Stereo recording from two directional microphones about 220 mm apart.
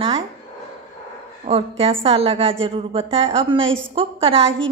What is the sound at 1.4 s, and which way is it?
A woman's voice, 25° right (ahead or behind).